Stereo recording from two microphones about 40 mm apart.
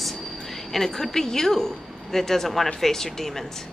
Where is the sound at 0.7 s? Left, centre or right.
Centre.